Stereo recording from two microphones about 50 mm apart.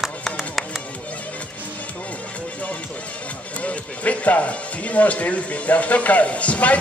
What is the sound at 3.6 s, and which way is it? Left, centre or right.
Speech, left.